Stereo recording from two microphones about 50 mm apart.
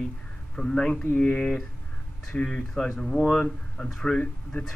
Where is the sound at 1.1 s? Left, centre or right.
Left.